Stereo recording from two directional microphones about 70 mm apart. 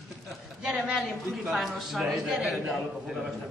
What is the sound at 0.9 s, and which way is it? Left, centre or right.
A man's voice, centre.